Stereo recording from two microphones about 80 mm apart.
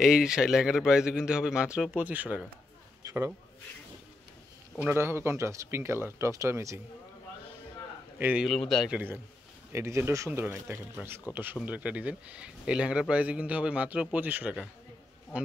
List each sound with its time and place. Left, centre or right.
0.0 s speech: centre
4.8 s speech: right
8.5 s speech: centre
8.9 s speech: right